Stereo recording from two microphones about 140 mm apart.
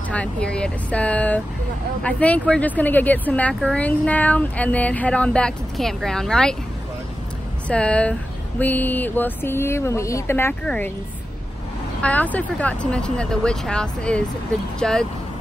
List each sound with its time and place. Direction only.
0.1 s speech: 10° left (ahead or behind)
7.6 s speech: 10° left (ahead or behind)
12.0 s speech: 10° left (ahead or behind)